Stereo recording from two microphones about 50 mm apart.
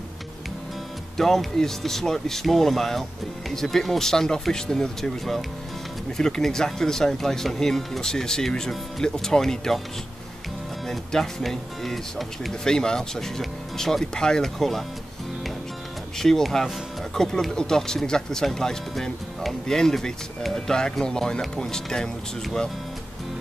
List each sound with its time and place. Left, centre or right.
1.1 s speech: centre
6.1 s speech: centre
10.9 s speech: centre
12.6 s speech: centre
14.6 s speech: centre
16.2 s speech: centre